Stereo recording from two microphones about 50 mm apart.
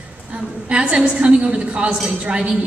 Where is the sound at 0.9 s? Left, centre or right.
Centre.